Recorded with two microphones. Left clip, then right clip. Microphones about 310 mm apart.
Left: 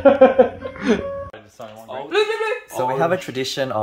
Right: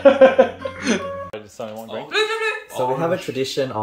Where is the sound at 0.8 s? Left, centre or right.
Left.